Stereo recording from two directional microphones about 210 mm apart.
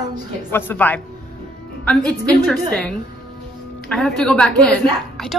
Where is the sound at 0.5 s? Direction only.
10° left (ahead or behind).